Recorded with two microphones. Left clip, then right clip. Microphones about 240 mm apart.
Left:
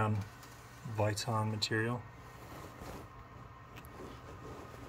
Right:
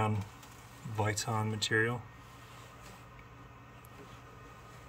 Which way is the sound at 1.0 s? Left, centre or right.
Centre.